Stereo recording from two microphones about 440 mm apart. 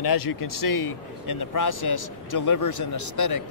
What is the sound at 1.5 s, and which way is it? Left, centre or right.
Speech, left.